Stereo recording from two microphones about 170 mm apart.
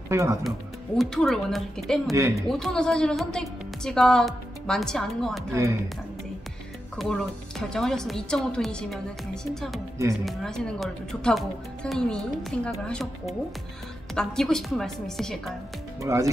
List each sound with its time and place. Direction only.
0.1 s speech: 15° right (ahead or behind)
0.9 s a woman's voice: centre (ahead or behind)
2.1 s speech: 15° right (ahead or behind)
2.4 s a woman's voice: centre (ahead or behind)
7.0 s a woman's voice: 5° left (ahead or behind)
16.0 s speech: 20° right (ahead or behind)